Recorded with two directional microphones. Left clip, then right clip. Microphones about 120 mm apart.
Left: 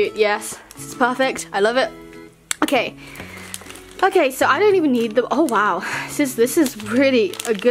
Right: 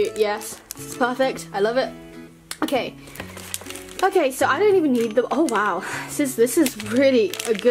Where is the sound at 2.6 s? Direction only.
50° left (ahead or behind).